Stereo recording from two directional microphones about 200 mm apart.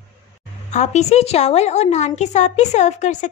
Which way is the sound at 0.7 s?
35° left (ahead or behind).